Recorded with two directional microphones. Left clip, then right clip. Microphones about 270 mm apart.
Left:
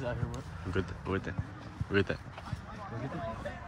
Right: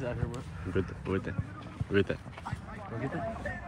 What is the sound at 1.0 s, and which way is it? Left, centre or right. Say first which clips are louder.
Rub: right 1 dB; centre.